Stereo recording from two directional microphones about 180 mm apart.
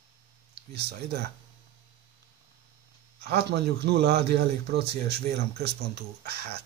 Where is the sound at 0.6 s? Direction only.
65° right (ahead or behind).